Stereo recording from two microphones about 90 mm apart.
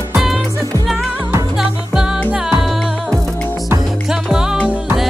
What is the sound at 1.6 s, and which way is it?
Music, 5° right (ahead or behind).